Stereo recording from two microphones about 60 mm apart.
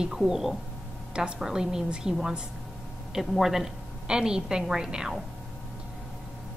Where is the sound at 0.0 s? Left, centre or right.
Centre.